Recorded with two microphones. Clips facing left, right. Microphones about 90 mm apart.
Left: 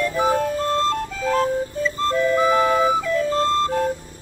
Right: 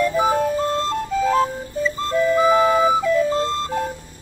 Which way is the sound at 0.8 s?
Centre (ahead or behind).